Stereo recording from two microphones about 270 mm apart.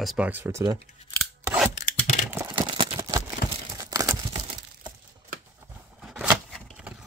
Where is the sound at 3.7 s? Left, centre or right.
Centre.